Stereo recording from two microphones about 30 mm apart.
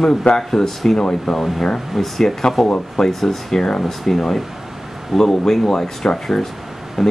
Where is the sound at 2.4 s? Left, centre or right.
Left.